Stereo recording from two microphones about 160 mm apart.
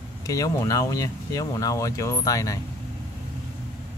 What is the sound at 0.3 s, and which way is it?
Speech, 20° left (ahead or behind).